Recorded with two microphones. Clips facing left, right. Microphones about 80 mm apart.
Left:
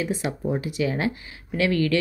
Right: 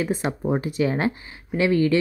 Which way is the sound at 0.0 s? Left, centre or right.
Right.